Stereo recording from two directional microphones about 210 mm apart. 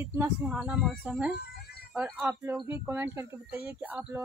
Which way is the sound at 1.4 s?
50° left (ahead or behind).